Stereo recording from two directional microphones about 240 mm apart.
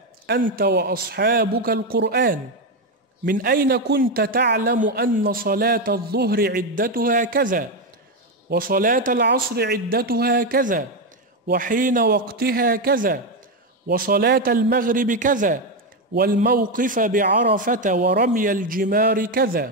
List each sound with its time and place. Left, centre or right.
0.3 s a man's voice: right